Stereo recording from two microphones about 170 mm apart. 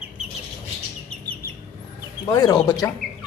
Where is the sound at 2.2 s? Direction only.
25° left (ahead or behind).